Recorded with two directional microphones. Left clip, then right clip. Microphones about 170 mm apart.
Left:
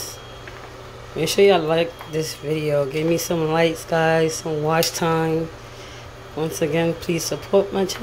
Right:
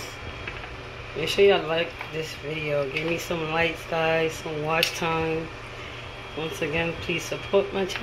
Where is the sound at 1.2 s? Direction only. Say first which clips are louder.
Left 4 dB; 65° left (ahead or behind); by 5.3 s 50° left (ahead or behind).